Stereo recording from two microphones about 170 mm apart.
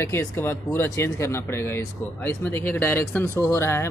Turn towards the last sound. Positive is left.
turn(degrees=15)  # may be behind; listen again after turning